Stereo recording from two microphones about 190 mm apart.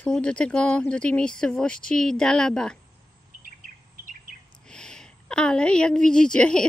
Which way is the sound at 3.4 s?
45° right (ahead or behind).